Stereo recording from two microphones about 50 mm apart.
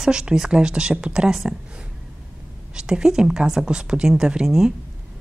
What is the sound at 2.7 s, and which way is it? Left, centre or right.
Speech, centre.